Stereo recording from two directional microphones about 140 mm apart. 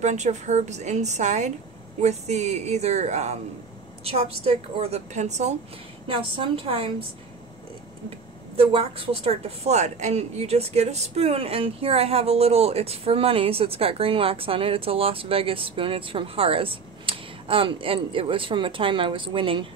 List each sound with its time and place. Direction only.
0.0 s a woman's voice: 55° right (ahead or behind)
6.0 s a woman's voice: 40° right (ahead or behind)
8.5 s a woman's voice: 40° right (ahead or behind)